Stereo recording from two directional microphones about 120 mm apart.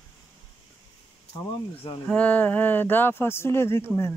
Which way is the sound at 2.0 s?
15° left (ahead or behind).